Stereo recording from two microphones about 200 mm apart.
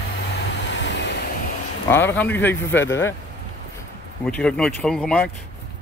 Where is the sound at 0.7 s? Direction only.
65° left (ahead or behind).